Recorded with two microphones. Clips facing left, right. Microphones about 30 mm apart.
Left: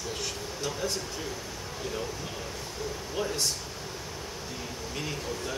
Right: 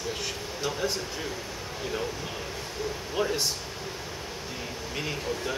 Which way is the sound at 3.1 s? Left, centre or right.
Centre.